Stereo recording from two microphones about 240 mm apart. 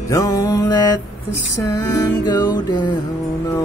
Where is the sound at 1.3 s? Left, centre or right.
Left.